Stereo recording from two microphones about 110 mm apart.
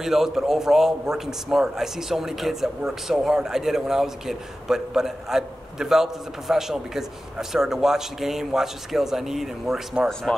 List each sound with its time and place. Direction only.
0.0 s a man's voice: 5° right (ahead or behind)